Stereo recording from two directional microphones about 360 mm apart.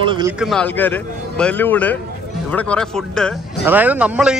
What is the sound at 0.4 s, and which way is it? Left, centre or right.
Speech, centre.